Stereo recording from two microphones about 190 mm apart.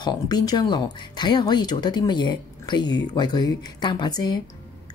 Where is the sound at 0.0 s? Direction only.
20° left (ahead or behind).